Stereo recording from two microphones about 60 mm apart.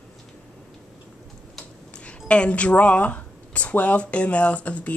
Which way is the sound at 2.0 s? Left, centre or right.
Left.